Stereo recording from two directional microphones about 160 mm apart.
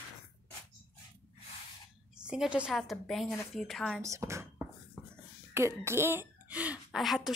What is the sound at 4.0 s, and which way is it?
Speech, 20° right (ahead or behind).